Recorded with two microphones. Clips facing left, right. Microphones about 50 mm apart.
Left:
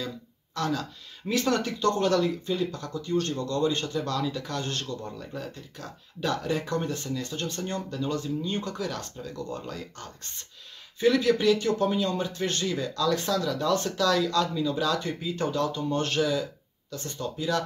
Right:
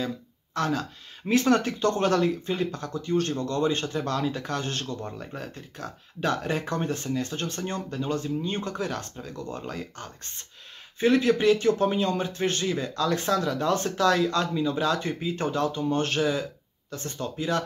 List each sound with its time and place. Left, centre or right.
0.6 s speech: right